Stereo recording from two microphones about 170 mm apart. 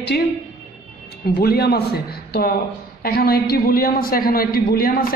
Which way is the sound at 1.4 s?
65° left (ahead or behind).